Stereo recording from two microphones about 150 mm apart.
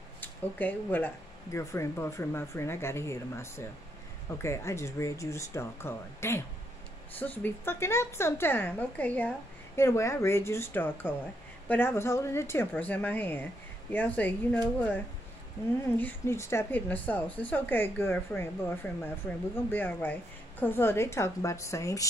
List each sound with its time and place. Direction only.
0.2 s speech: 10° left (ahead or behind)
16.0 s speech: 15° left (ahead or behind)